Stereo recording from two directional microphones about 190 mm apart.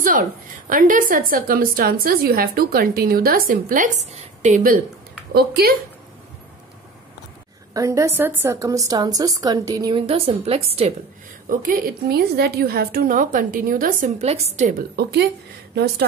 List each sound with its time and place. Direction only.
0.0 s a woman's voice: 45° right (ahead or behind)
5.3 s speech: 55° right (ahead or behind)
7.7 s a woman's voice: 15° right (ahead or behind); by 11.0 s 30° right (ahead or behind)
11.4 s a woman's voice: 45° right (ahead or behind)
15.0 s speech: 55° right (ahead or behind)